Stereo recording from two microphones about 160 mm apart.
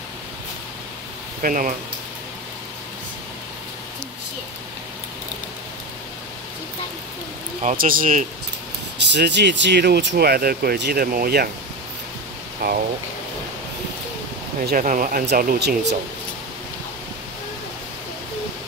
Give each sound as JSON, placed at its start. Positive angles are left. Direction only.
{"t": 1.4, "sound": "speech", "side_deg": -55}
{"t": 7.6, "sound": "speech", "side_deg": -60}
{"t": 8.9, "sound": "speech", "side_deg": -90}
{"t": 12.6, "sound": "speech", "side_deg": -80}
{"t": 14.7, "sound": "speech", "side_deg": -55}
{"t": 15.2, "sound": "speech", "side_deg": -75}